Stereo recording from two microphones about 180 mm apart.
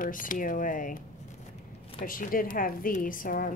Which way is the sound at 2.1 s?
50° left (ahead or behind).